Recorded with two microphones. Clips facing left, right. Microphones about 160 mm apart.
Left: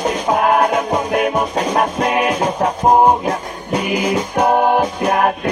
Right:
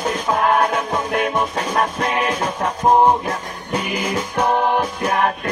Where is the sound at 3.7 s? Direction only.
10° left (ahead or behind).